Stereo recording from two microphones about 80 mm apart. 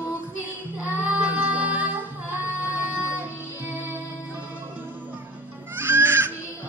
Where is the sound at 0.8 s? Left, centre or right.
Right.